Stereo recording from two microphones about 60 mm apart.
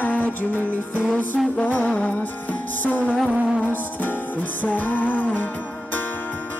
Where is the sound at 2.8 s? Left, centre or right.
Left.